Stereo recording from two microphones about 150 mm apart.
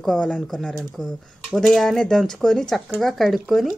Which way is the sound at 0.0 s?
5° left (ahead or behind).